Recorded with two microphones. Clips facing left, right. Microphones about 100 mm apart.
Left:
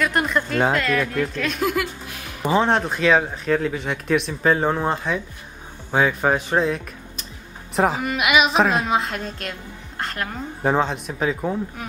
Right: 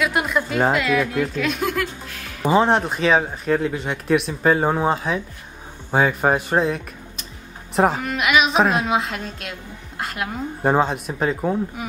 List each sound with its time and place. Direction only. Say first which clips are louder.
0.0 s a woman's voice: even; 5° right (ahead or behind)
2.0 s music: even; 15° left (ahead or behind)
2.4 s a woman's voice: right 2 dB; 5° right (ahead or behind)